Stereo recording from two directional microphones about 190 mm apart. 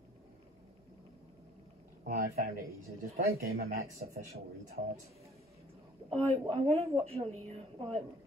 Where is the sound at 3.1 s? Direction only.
55° right (ahead or behind).